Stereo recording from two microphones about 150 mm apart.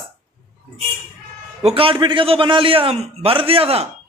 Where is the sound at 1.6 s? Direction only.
35° right (ahead or behind).